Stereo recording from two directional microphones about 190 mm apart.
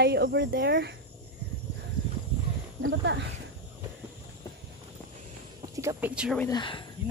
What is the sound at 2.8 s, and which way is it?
Speech, 90° right.